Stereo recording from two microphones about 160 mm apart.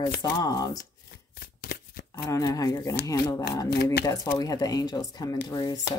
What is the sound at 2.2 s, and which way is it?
Speech, 20° left (ahead or behind).